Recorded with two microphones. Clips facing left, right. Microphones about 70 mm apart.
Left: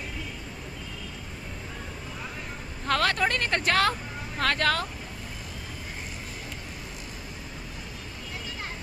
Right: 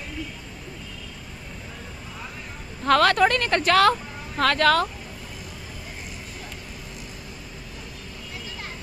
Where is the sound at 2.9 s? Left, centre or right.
Right.